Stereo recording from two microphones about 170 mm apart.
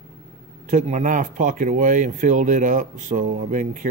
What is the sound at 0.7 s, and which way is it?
Speech, 45° right (ahead or behind).